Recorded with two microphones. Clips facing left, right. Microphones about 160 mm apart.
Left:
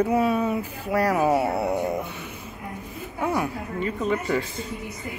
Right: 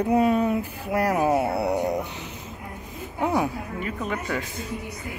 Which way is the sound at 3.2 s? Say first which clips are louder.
Right 2 dB; 15° right (ahead or behind).